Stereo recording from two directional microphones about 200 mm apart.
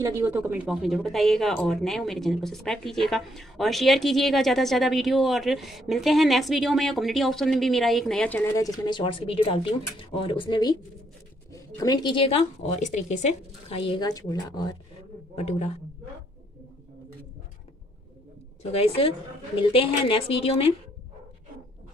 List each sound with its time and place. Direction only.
0.0 s a woman's voice: 15° right (ahead or behind); by 14.8 s 20° left (ahead or behind)
15.3 s a man's voice: 30° left (ahead or behind)
18.7 s a woman's voice: 30° left (ahead or behind)